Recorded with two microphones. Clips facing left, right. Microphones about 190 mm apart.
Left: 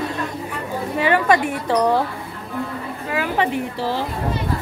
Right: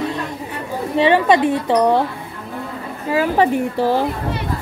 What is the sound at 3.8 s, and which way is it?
Speech, 55° right (ahead or behind).